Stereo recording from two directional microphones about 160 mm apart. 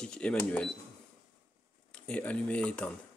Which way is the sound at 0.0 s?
5° left (ahead or behind).